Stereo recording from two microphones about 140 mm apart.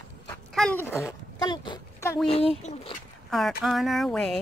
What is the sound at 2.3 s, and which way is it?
Speech, 45° left (ahead or behind).